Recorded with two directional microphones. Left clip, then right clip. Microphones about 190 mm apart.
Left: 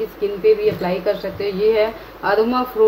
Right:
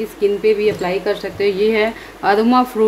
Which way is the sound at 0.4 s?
40° right (ahead or behind).